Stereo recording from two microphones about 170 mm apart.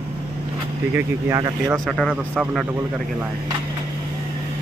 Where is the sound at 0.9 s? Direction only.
15° right (ahead or behind).